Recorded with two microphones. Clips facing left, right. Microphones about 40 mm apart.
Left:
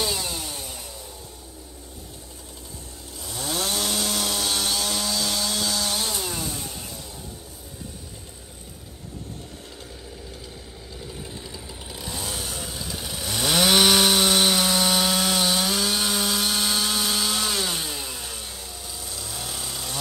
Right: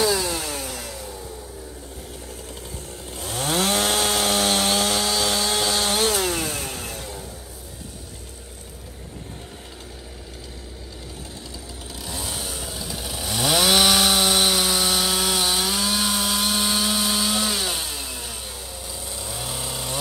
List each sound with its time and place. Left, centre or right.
0.3 s chainsaw: right
3.2 s chainsaw: right
11.9 s chainsaw: centre